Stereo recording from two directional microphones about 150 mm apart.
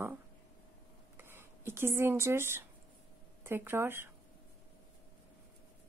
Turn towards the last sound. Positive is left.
turn(degrees=-15)  # may be behind; listen again after turning